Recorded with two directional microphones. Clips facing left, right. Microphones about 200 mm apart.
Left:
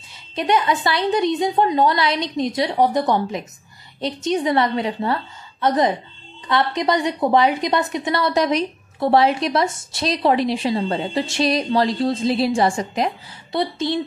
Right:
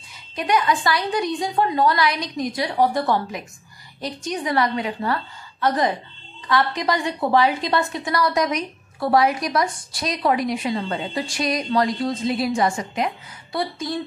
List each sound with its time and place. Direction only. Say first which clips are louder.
0.4 s a woman's voice: left 2 dB; 25° left (ahead or behind)